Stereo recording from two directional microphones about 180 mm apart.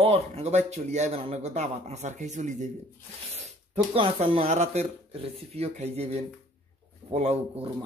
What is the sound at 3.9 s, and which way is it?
Speech, 30° right (ahead or behind).